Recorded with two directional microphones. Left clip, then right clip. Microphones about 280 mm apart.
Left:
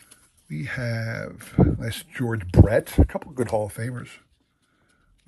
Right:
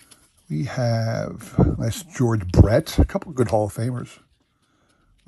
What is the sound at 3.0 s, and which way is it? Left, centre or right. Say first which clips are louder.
Speech: right 2 dB; left.